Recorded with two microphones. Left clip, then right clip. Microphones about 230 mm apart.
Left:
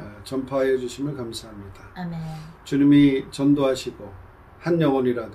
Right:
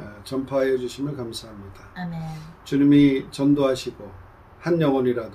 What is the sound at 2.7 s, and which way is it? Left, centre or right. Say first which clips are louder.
Speech: even; centre.